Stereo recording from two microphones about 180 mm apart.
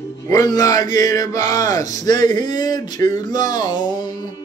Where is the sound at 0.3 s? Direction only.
20° left (ahead or behind).